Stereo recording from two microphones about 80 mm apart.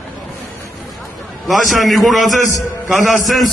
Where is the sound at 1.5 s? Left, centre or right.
Centre.